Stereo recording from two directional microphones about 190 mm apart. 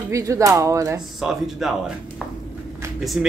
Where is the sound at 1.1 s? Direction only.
Centre (ahead or behind).